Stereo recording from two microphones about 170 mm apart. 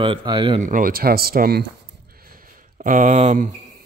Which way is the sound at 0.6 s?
55° right (ahead or behind).